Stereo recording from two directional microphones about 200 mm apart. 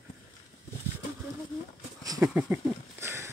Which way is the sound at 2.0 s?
15° right (ahead or behind).